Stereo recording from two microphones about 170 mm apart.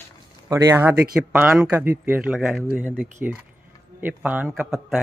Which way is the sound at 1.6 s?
15° right (ahead or behind).